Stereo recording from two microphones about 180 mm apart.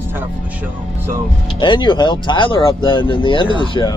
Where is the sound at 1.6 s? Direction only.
25° left (ahead or behind).